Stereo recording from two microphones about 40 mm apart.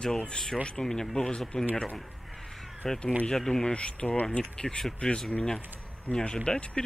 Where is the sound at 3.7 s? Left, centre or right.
Left.